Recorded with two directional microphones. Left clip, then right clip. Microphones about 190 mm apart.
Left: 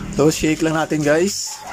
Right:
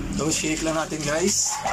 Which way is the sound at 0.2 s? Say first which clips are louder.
Left 9 dB; 45° left (ahead or behind).